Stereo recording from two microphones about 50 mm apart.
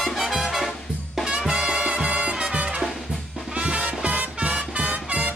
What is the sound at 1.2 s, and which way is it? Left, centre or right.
Music, centre.